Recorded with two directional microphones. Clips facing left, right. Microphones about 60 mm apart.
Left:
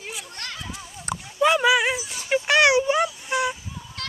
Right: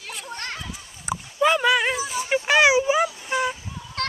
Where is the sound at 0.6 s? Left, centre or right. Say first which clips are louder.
Left 1 dB; centre.